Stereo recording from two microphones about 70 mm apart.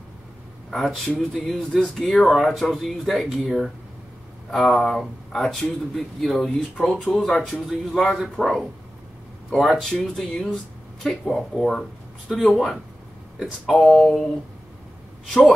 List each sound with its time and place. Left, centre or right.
0.7 s speech: centre